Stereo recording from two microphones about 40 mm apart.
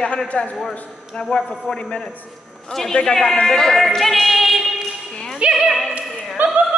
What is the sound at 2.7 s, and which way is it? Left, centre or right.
A man's voice, centre.